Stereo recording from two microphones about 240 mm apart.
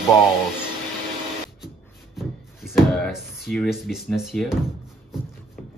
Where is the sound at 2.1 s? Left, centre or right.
Centre.